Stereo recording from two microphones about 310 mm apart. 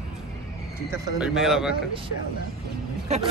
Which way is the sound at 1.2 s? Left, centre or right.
Centre.